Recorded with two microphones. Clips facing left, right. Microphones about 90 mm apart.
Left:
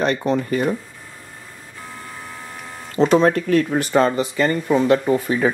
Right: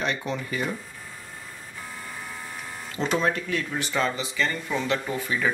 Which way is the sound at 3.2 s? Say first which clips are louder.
Left 10 dB; 45° left (ahead or behind).